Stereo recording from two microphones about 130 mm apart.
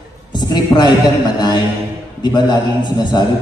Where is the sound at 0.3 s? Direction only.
35° left (ahead or behind).